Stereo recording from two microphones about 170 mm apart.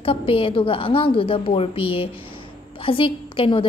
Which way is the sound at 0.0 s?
30° left (ahead or behind).